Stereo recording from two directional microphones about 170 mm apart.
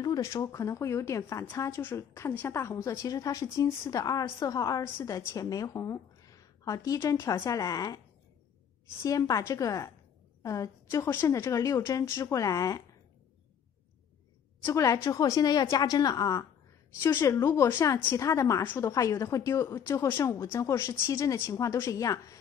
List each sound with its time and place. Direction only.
0.0 s a woman's voice: 20° left (ahead or behind)
9.0 s a woman's voice: 20° left (ahead or behind)
14.6 s a woman's voice: 15° left (ahead or behind)